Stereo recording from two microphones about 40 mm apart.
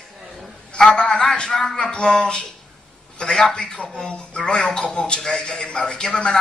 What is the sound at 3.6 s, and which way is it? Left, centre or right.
Speech, centre.